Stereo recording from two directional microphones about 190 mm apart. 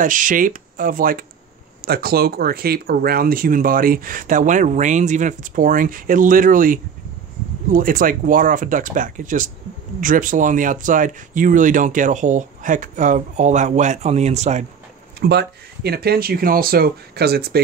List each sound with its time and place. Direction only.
0.0 s speech: 45° right (ahead or behind)
15.1 s speech: 60° right (ahead or behind)